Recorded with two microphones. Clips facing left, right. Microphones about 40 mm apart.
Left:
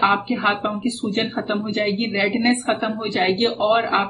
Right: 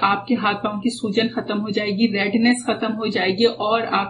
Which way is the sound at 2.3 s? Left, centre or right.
Centre.